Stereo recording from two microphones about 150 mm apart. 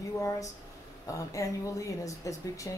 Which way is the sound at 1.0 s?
20° left (ahead or behind).